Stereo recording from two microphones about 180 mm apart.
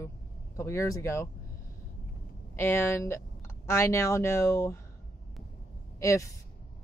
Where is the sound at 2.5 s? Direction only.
15° left (ahead or behind).